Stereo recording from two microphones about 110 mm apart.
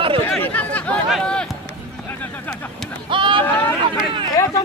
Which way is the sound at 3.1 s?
50° right (ahead or behind).